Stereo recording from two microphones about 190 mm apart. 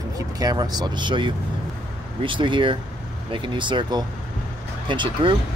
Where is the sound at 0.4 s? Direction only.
20° right (ahead or behind).